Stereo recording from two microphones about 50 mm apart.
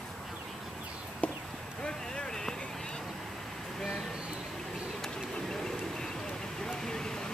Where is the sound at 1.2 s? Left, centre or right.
Left.